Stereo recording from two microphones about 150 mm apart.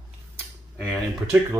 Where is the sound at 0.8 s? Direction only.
5° left (ahead or behind).